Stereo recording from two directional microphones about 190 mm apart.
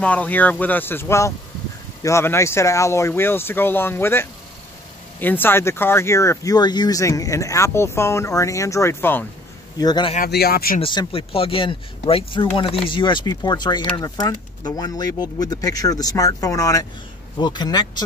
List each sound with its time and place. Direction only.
0.0 s speech: 10° left (ahead or behind)
10.1 s speech: 55° left (ahead or behind)
10.8 s speech: 25° left (ahead or behind)